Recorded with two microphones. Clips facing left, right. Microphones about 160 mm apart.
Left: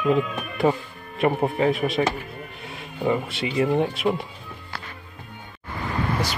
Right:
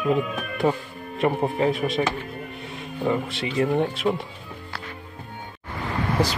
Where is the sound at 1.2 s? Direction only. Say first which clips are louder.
Left 1 dB; 5° left (ahead or behind).